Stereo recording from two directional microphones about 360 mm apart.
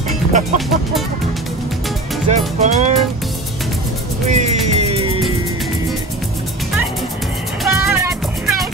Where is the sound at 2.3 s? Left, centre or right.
Centre.